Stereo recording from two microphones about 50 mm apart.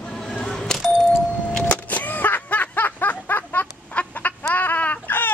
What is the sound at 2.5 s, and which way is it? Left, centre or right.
Snicker, left.